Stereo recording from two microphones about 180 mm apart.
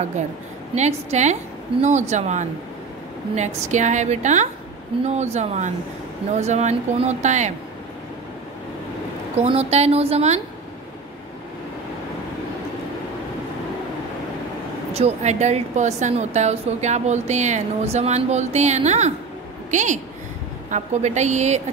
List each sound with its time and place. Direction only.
0.7 s a woman's voice: 40° right (ahead or behind)
9.4 s a woman's voice: 35° right (ahead or behind)
15.0 s a woman's voice: 40° right (ahead or behind)